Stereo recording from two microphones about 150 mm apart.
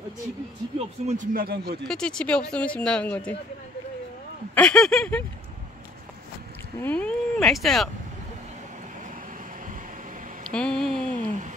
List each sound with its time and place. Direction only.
0.7 s speech: 50° right (ahead or behind); by 1.8 s 80° right
1.9 s speech: 5° left (ahead or behind)
4.6 s speech: 5° left (ahead or behind)
6.8 s speech: 10° left (ahead or behind)
10.5 s speech: 5° left (ahead or behind)
11.1 s speech: 55° right (ahead or behind)